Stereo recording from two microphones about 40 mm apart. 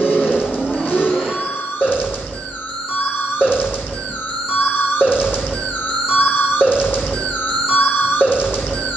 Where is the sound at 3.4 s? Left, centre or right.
Right.